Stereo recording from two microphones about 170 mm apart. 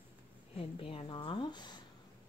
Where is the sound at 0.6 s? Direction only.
35° left (ahead or behind).